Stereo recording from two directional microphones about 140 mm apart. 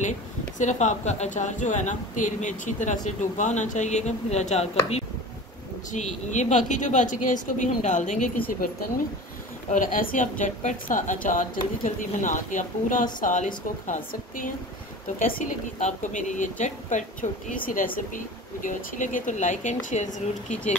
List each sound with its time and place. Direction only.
0.6 s a woman's voice: 60° left (ahead or behind)
8.5 s speech: 90° left
9.7 s a woman's voice: 75° left (ahead or behind)